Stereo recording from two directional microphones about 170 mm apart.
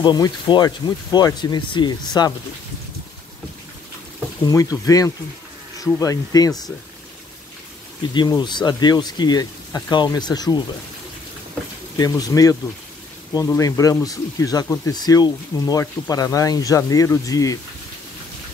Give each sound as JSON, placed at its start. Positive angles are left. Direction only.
{"t": 0.0, "sound": "speech", "side_deg": 25}
{"t": 4.5, "sound": "speech", "side_deg": 20}
{"t": 8.1, "sound": "speech", "side_deg": 25}
{"t": 12.0, "sound": "speech", "side_deg": 20}